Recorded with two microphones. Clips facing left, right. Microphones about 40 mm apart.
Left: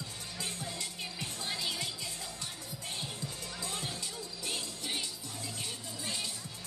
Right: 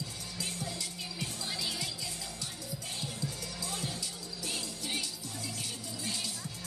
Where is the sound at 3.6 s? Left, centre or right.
Left.